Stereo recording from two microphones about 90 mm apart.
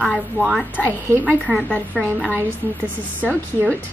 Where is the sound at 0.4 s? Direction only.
5° left (ahead or behind).